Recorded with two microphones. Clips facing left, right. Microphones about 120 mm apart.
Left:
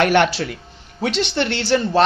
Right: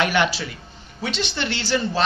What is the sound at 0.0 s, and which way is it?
Speech, 60° left (ahead or behind).